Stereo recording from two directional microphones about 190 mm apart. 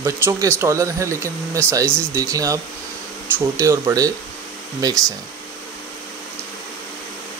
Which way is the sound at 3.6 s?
15° right (ahead or behind).